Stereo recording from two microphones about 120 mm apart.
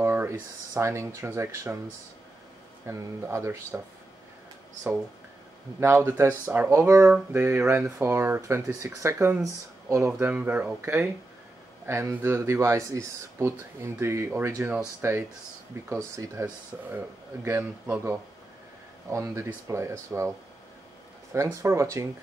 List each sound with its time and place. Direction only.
0.0 s speech: 20° right (ahead or behind)
2.9 s speech: 20° right (ahead or behind)
5.8 s speech: 20° right (ahead or behind)